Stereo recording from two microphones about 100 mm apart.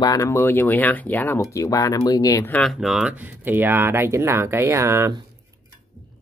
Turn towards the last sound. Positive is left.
turn(degrees=-30)  # may be behind; listen again after turning